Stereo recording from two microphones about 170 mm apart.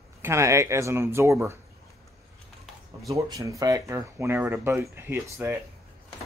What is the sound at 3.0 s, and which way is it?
Speech, 20° right (ahead or behind).